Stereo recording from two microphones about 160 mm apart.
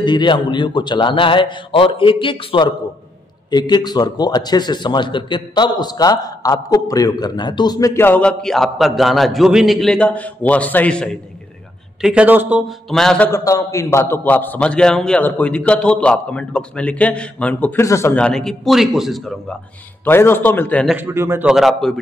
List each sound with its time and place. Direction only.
0.0 s a man's voice: 30° left (ahead or behind); by 11.1 s 5° left (ahead or behind)
12.0 s a man's voice: 5° right (ahead or behind)
13.3 s a man's voice: 20° left (ahead or behind); by 19.3 s centre (ahead or behind)
20.1 s a man's voice: 15° left (ahead or behind)
20.9 s a man's voice: 15° right (ahead or behind)